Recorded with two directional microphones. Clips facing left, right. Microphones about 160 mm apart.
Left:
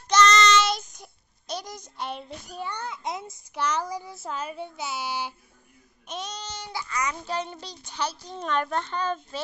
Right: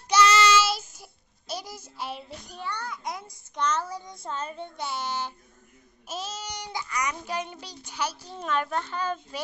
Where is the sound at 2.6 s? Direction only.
20° left (ahead or behind).